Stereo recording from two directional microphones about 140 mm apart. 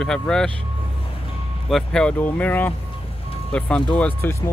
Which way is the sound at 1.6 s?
5° left (ahead or behind).